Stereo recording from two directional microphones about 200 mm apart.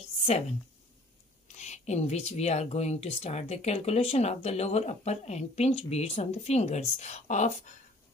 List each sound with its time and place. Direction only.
0.2 s a woman's voice: 30° left (ahead or behind)